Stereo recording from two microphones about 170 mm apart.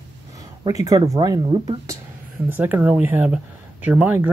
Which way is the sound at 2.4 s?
10° right (ahead or behind).